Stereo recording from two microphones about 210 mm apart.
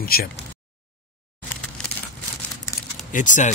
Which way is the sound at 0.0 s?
45° left (ahead or behind).